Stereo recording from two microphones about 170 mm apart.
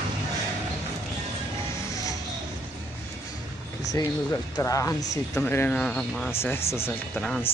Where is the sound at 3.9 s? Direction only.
20° left (ahead or behind).